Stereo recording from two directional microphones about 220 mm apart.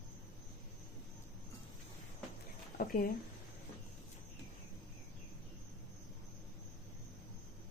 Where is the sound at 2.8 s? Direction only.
40° left (ahead or behind).